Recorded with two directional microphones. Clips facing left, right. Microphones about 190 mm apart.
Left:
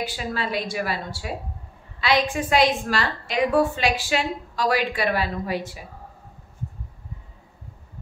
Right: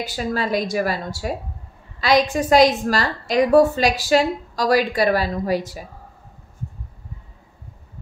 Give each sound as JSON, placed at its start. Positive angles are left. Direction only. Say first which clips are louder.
{"t": 0.0, "sound": "a woman's voice", "louder": "right 4 dB", "side_deg": -40}